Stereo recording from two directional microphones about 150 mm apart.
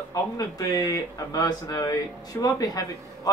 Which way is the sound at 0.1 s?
25° left (ahead or behind).